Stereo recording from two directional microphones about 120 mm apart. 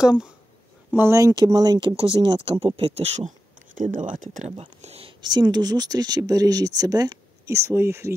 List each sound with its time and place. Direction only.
0.0 s speech: 5° right (ahead or behind)
0.9 s speech: 20° right (ahead or behind)
2.0 s speech: 45° right (ahead or behind)
5.2 s speech: 35° right (ahead or behind)